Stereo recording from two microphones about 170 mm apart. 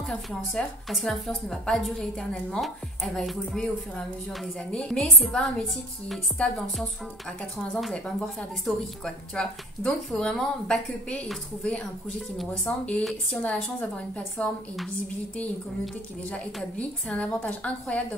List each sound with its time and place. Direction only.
0.0 s a woman's voice: 5° left (ahead or behind)